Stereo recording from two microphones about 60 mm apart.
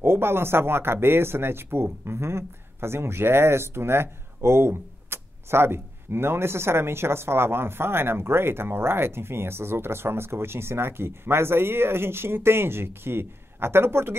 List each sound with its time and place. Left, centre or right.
0.0 s speech: right